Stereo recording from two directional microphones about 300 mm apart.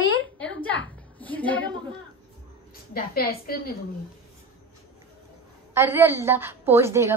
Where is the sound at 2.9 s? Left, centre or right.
Left.